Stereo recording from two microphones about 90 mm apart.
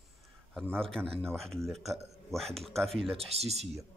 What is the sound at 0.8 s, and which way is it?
Speech, 5° left (ahead or behind).